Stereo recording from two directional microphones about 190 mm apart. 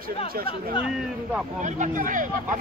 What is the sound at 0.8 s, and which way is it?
Speech, 5° right (ahead or behind).